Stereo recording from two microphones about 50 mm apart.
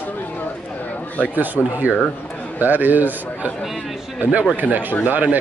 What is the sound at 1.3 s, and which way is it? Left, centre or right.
A man's voice, right.